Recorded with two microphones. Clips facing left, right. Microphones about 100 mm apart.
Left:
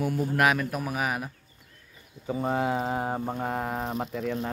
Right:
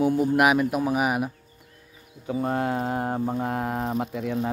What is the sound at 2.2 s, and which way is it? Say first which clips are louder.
Speech: right 1 dB; centre (ahead or behind).